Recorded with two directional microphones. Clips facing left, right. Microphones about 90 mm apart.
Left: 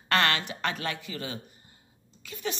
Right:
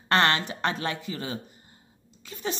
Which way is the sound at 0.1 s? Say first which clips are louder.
Right 3 dB; 30° right (ahead or behind).